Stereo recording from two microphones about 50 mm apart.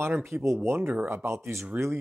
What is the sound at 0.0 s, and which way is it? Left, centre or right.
Speech, right.